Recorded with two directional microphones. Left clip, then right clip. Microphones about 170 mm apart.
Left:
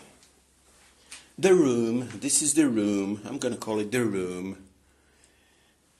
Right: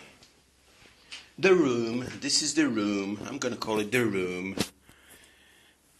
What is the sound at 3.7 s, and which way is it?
Speech, 15° left (ahead or behind).